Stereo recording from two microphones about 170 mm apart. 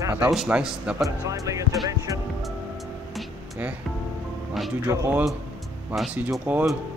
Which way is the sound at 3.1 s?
5° right (ahead or behind).